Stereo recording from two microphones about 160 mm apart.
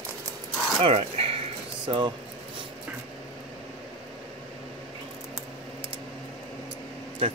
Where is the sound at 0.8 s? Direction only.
35° right (ahead or behind).